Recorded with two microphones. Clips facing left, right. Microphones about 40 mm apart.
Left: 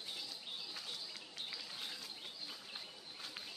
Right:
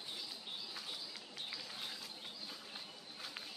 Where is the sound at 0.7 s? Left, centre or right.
Centre.